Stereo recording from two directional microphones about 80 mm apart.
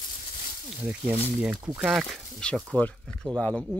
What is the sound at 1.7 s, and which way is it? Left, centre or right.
Speech, centre.